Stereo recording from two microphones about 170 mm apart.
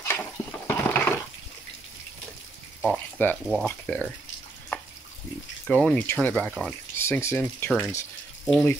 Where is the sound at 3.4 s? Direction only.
Centre (ahead or behind).